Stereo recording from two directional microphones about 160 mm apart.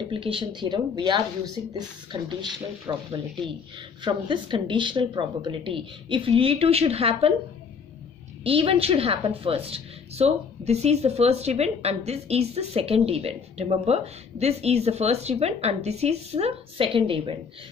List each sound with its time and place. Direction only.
0.1 s speech: 30° right (ahead or behind)
8.5 s speech: 35° right (ahead or behind)